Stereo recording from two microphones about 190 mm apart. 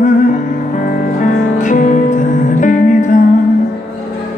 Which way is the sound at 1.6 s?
40° left (ahead or behind).